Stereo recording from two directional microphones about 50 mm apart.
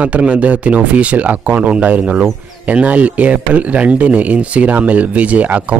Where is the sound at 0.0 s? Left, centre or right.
Right.